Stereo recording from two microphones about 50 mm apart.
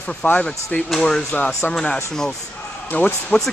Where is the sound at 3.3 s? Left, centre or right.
Left.